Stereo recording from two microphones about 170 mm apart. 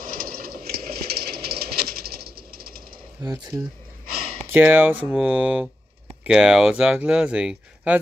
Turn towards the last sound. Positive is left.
turn(degrees=-5)  # may be behind; listen again after turning